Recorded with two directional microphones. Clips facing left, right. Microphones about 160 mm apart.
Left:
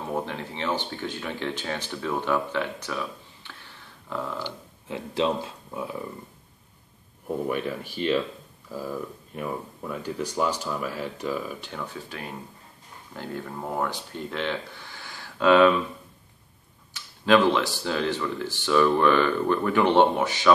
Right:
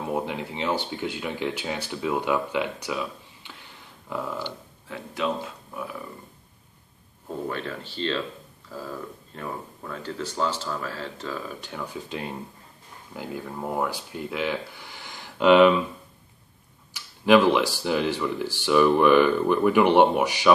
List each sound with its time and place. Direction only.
0.1 s speech: 10° right (ahead or behind)
4.8 s speech: 25° left (ahead or behind)
7.4 s speech: 15° left (ahead or behind)
11.6 s speech: 10° right (ahead or behind)
13.1 s speech: 10° right (ahead or behind)
16.9 s speech: 10° right (ahead or behind)